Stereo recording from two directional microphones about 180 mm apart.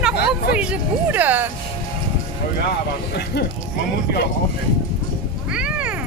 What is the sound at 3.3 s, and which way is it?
Speech, 65° left (ahead or behind).